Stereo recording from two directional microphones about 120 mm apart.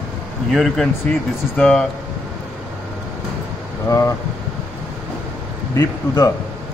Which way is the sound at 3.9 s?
30° left (ahead or behind).